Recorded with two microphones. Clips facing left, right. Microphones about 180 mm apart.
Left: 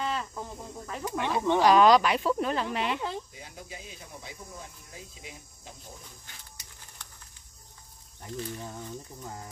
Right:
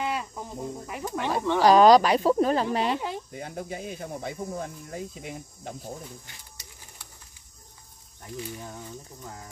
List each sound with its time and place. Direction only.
0.0 s cricket: 15° right (ahead or behind)
1.1 s speech: 15° left (ahead or behind)
1.6 s speech: 35° right (ahead or behind)
3.3 s speech: 55° right (ahead or behind)